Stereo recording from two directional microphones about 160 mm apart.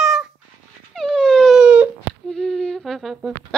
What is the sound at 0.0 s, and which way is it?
Dog, 5° right (ahead or behind).